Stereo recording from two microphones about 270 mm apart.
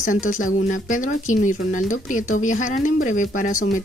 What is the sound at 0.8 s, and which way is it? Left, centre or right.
Speech, left.